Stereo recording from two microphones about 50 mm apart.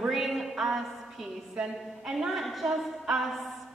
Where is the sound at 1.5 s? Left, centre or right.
Centre.